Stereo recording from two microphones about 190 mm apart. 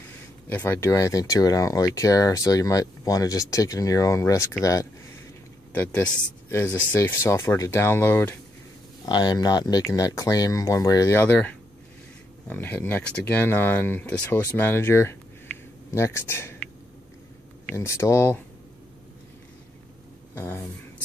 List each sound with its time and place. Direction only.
0.5 s speech: 10° left (ahead or behind)
5.7 s speech: 10° left (ahead or behind)
9.0 s speech: 20° left (ahead or behind)
17.7 s speech: 15° left (ahead or behind)
20.3 s speech: 10° left (ahead or behind)